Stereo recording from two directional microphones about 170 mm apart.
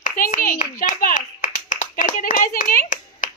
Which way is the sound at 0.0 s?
50° left (ahead or behind).